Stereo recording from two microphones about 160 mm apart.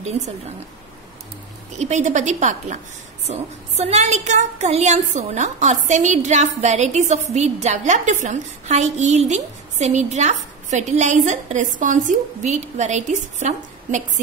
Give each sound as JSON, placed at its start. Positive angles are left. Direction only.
{"t": 0.2, "sound": "a woman's voice", "side_deg": -25}
{"t": 1.8, "sound": "a woman's voice", "side_deg": -45}